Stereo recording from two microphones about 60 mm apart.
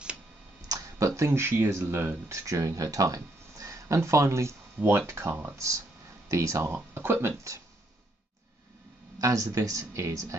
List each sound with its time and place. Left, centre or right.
0.7 s speech: right
6.2 s speech: right
6.7 s speech: right
9.2 s speech: right